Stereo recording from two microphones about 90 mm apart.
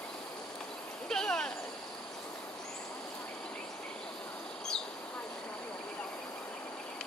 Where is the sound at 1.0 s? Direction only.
5° left (ahead or behind).